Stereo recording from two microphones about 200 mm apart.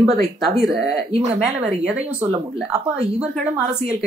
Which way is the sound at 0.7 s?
50° right (ahead or behind).